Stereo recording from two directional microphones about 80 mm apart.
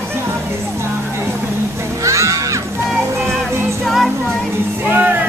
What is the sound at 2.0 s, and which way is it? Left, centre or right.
Music, right.